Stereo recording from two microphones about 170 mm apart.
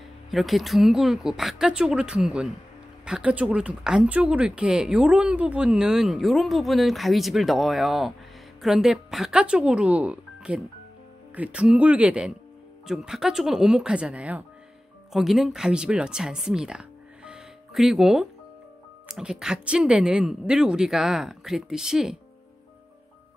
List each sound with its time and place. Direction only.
0.3 s speech: centre (ahead or behind)